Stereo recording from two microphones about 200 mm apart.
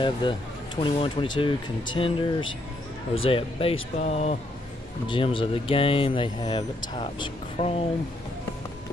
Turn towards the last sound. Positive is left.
turn(degrees=30)  # may be behind; listen again after turning